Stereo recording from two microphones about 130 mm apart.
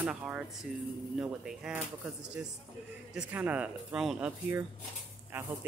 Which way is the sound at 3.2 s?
15° right (ahead or behind).